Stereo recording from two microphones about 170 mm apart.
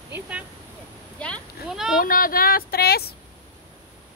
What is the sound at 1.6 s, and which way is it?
Speech, 5° right (ahead or behind).